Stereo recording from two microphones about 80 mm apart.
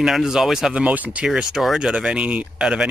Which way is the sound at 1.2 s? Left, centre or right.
Centre.